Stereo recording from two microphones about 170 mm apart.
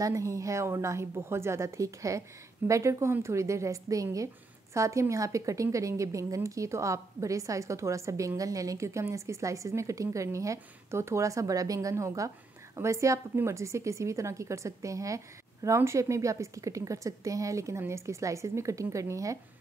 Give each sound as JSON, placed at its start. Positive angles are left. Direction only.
{"t": 0.0, "sound": "a woman's voice", "side_deg": -20}